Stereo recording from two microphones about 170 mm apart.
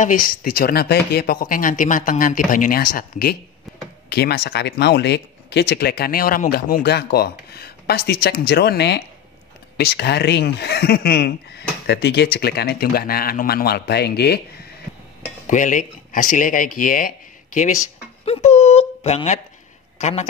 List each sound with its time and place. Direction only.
0.0 s speech: 50° left (ahead or behind)
4.1 s speech: 70° left (ahead or behind)
15.4 s speech: 50° left (ahead or behind)
18.2 s a woman's voice: 40° left (ahead or behind)